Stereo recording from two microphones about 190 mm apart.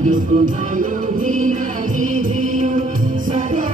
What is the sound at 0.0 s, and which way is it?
Music, 40° right (ahead or behind).